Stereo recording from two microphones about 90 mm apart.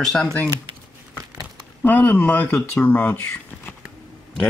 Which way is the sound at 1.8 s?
20° left (ahead or behind).